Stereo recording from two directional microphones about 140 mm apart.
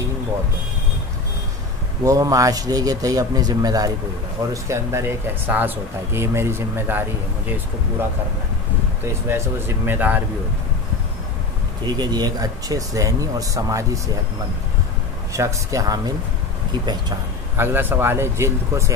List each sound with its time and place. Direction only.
2.0 s speech: 25° right (ahead or behind)
9.0 s speech: 15° right (ahead or behind)
11.8 s speech: 30° right (ahead or behind)
15.3 s speech: 20° right (ahead or behind)
17.6 s speech: 15° right (ahead or behind)